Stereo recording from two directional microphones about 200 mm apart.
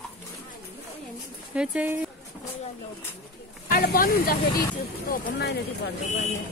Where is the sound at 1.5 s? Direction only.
5° right (ahead or behind).